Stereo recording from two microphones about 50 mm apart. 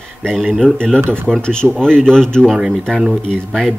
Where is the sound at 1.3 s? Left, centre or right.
Centre.